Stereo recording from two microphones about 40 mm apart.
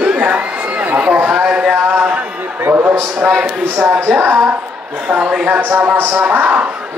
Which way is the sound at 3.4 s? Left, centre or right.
Right.